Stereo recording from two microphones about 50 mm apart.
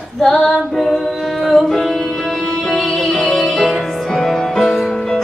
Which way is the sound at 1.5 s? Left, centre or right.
Centre.